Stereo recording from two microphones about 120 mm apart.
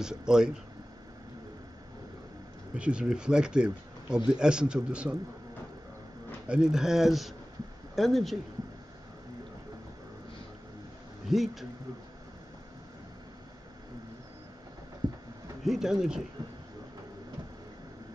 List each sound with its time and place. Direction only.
0.0 s speech: 5° right (ahead or behind)
2.7 s a man's voice: 10° right (ahead or behind)
6.4 s speech: 5° right (ahead or behind)
11.2 s speech: centre (ahead or behind)
15.6 s speech: 5° right (ahead or behind)